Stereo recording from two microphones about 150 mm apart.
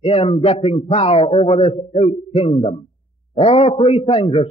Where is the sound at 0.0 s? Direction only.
40° left (ahead or behind).